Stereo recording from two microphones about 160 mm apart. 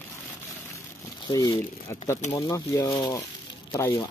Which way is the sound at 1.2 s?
20° left (ahead or behind).